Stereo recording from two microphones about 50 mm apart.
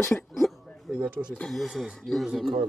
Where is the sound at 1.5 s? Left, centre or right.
Centre.